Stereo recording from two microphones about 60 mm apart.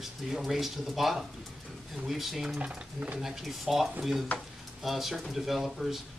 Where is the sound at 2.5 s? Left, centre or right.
Right.